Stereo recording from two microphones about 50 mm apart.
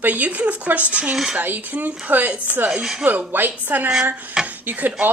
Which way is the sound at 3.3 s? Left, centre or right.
Right.